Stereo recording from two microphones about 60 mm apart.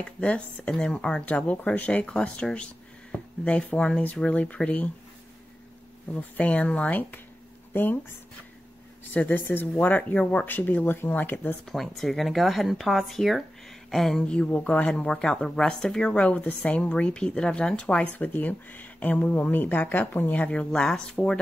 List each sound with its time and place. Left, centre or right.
0.2 s speech: centre
6.1 s speech: left
9.1 s speech: left
11.6 s speech: centre
14.2 s speech: centre
18.1 s speech: left; by 21.4 s centre